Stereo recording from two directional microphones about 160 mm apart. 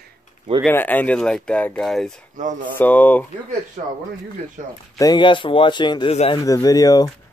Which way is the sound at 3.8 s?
50° right (ahead or behind).